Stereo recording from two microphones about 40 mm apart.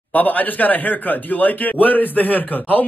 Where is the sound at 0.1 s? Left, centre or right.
Left.